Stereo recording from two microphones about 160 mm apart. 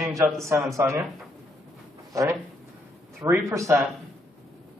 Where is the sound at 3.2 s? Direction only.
15° right (ahead or behind).